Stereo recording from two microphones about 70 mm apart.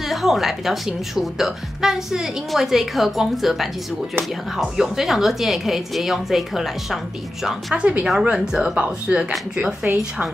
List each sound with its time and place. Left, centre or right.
0.1 s a woman's voice: centre
4.7 s a woman's voice: centre
7.4 s speech: centre